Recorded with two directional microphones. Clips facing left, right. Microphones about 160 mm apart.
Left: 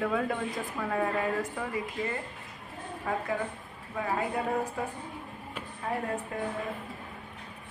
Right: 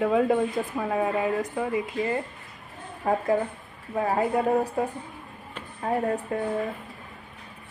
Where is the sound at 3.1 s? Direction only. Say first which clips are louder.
Right 8 dB; 35° right (ahead or behind).